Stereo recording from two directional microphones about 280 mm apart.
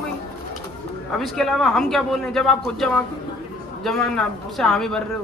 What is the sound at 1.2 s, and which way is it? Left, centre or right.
A man's voice, centre.